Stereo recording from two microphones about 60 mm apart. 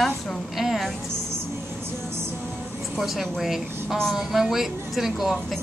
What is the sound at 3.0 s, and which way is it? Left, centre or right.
A woman's voice, centre.